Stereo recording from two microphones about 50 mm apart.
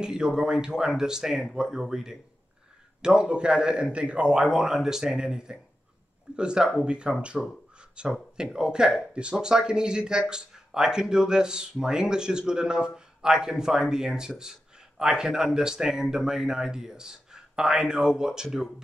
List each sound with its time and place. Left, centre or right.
0.0 s speech: centre
4.4 s speech: centre